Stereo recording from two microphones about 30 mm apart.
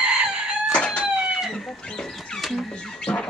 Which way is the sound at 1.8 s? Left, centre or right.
Left.